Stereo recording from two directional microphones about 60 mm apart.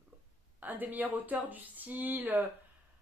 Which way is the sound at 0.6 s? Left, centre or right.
Right.